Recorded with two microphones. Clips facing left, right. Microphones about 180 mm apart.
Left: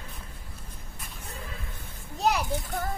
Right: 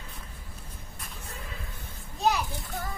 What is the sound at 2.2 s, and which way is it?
Children playing, 65° left (ahead or behind).